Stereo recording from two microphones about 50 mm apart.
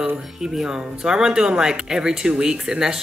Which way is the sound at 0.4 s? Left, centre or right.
Centre.